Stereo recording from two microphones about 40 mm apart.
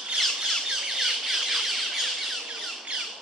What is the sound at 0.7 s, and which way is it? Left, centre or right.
Squawk, centre.